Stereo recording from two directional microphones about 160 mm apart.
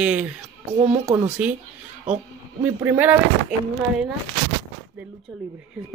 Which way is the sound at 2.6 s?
10° right (ahead or behind).